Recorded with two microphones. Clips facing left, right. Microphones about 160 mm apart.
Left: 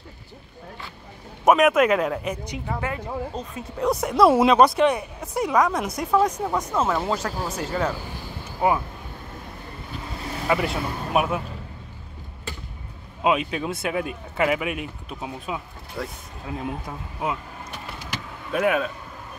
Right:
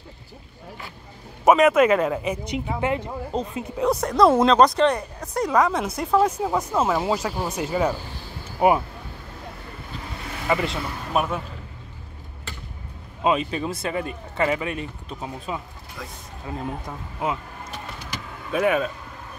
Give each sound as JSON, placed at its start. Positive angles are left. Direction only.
{"t": 1.4, "sound": "speech", "side_deg": 0}
{"t": 2.4, "sound": "speech", "side_deg": -20}
{"t": 3.7, "sound": "speech", "side_deg": 0}
{"t": 10.5, "sound": "speech", "side_deg": 5}
{"t": 13.2, "sound": "speech", "side_deg": 5}
{"t": 16.0, "sound": "speech", "side_deg": 35}
{"t": 16.4, "sound": "speech", "side_deg": 0}
{"t": 18.5, "sound": "speech", "side_deg": 0}